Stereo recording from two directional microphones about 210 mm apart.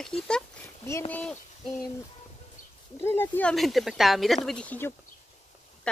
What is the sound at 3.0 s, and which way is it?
Speech, 10° left (ahead or behind).